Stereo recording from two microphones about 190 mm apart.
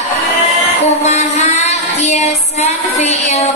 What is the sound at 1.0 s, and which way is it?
Child singing, 35° left (ahead or behind).